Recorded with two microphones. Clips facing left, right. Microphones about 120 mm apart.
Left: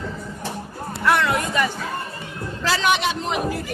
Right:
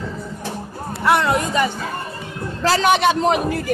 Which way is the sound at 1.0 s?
30° right (ahead or behind).